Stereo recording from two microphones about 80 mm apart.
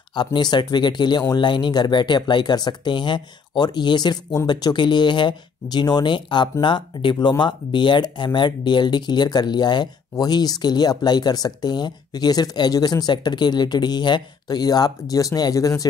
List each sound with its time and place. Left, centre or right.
0.1 s speech: left